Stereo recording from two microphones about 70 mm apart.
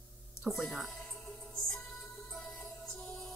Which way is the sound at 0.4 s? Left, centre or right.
Centre.